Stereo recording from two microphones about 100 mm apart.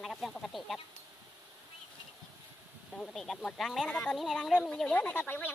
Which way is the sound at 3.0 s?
5° left (ahead or behind).